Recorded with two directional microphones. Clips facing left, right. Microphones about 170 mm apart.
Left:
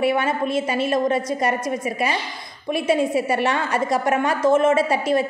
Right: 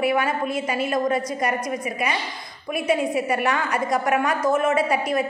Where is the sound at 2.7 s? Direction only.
30° left (ahead or behind).